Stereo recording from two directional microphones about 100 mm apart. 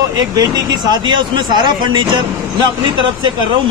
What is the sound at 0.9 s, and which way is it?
A man's voice, 50° right (ahead or behind).